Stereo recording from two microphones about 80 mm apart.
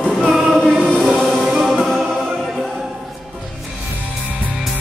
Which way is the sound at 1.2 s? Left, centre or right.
Centre.